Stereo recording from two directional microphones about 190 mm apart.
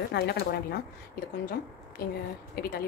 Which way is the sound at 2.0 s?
55° left (ahead or behind).